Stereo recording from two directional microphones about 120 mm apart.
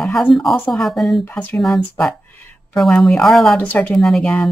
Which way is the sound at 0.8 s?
Centre (ahead or behind).